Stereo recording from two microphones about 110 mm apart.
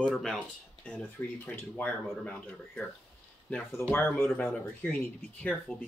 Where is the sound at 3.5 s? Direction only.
15° left (ahead or behind).